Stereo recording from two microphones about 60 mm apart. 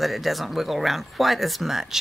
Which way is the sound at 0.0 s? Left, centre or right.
Centre.